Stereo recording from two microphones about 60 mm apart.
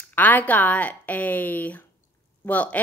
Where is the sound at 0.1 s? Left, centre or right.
Left.